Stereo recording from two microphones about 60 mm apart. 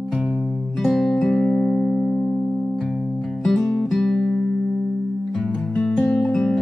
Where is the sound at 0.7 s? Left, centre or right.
Centre.